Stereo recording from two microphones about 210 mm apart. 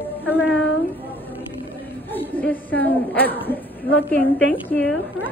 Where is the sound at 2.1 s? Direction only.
10° left (ahead or behind).